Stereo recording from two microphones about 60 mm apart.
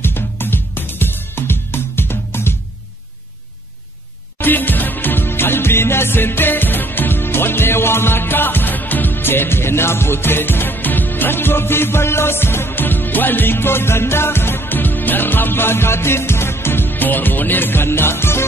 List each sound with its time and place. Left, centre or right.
0.0 s music: left
4.4 s music: left